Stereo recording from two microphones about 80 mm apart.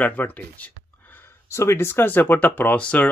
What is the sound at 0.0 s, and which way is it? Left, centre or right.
Speech, left.